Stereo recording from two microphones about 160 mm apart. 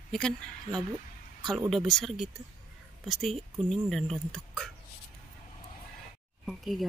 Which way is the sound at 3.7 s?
5° left (ahead or behind).